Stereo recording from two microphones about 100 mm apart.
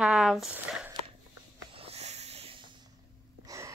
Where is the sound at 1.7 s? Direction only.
80° right.